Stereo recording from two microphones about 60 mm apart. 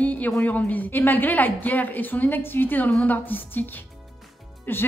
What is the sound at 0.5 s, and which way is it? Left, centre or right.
A woman's voice, left.